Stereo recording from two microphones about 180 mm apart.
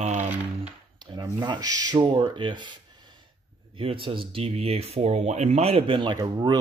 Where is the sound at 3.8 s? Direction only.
30° right (ahead or behind).